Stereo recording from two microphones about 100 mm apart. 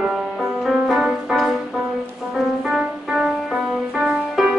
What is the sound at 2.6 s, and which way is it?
Music, 5° right (ahead or behind).